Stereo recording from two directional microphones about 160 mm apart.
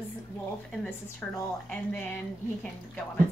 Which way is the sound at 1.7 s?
10° left (ahead or behind).